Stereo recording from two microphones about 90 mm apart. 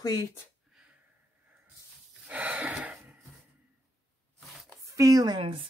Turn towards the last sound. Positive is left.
turn(degrees=-75)  # may be behind; listen again after turning